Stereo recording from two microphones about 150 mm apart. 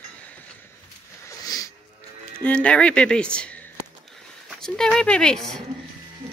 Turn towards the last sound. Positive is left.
turn(degrees=5)  # may be behind; listen again after turning